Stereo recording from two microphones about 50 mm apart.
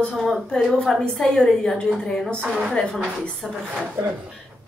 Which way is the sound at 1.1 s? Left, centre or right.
Centre.